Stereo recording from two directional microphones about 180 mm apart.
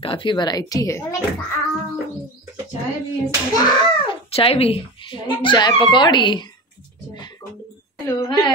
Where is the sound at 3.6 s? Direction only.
30° left (ahead or behind).